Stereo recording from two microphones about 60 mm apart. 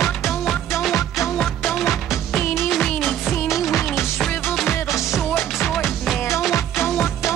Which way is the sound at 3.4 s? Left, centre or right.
Left.